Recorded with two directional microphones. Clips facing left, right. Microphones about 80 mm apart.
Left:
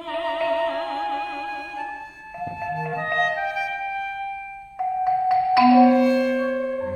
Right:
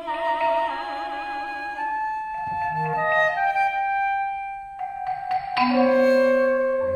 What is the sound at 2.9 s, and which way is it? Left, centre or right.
Music, right.